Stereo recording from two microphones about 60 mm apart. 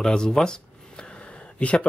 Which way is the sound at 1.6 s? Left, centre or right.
Left.